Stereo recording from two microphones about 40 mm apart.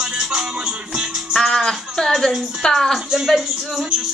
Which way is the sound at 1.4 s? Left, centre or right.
Centre.